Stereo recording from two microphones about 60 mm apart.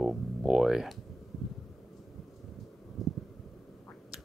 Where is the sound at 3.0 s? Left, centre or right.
Centre.